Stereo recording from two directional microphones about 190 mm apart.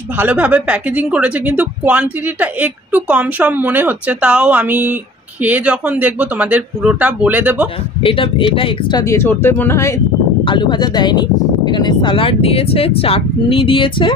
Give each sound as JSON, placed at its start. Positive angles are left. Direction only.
{"t": 0.2, "sound": "speech", "side_deg": -10}
{"t": 8.0, "sound": "speech", "side_deg": 25}
{"t": 9.1, "sound": "speech", "side_deg": 15}
{"t": 10.4, "sound": "speech", "side_deg": 25}